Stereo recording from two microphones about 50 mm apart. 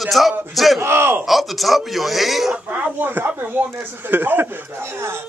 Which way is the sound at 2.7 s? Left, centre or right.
Right.